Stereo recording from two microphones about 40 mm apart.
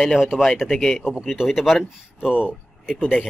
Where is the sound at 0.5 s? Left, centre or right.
Centre.